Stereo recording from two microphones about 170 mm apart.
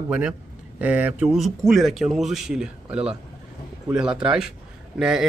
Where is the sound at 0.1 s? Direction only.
10° right (ahead or behind).